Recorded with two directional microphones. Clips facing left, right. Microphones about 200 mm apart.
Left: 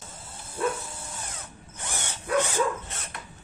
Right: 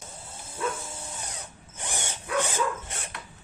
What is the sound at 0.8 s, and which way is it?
Drill, 20° right (ahead or behind).